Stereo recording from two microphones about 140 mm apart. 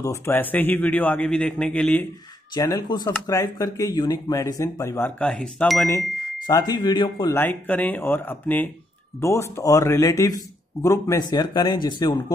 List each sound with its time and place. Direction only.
0.0 s a man's voice: 20° left (ahead or behind)
2.5 s a man's voice: 25° left (ahead or behind)
5.2 s speech: 5° left (ahead or behind)
6.4 s speech: 30° left (ahead or behind)
7.2 s a man's voice: 15° left (ahead or behind); by 12.1 s 30° left (ahead or behind)